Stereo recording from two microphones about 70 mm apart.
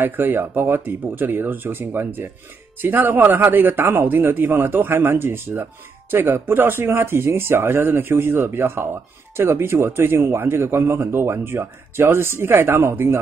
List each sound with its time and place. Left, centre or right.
0.0 s speech: right